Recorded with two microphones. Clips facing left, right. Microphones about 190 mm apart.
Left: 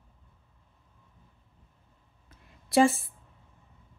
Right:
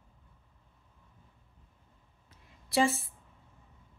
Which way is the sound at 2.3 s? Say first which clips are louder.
Left 3 dB; 55° left (ahead or behind).